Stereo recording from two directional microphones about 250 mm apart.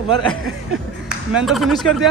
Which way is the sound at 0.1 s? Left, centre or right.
Centre.